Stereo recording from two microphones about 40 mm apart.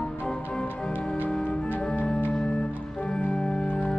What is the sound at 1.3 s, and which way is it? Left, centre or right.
Music, left.